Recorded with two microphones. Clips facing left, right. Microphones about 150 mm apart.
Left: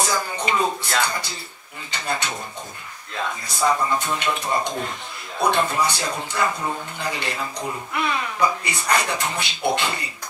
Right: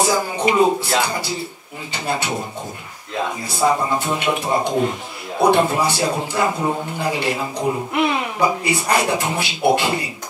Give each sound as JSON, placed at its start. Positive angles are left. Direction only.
{"t": 0.0, "sound": "speech", "side_deg": -25}
{"t": 0.8, "sound": "a man's voice", "side_deg": -10}
{"t": 3.5, "sound": "a man's voice", "side_deg": -25}
{"t": 6.0, "sound": "a man's voice", "side_deg": -25}
{"t": 9.4, "sound": "a man's voice", "side_deg": -10}